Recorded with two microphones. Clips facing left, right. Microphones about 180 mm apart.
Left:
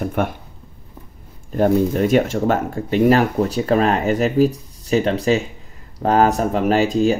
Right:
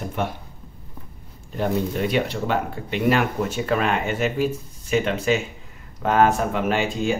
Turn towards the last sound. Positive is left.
turn(degrees=35)  # may be behind; listen again after turning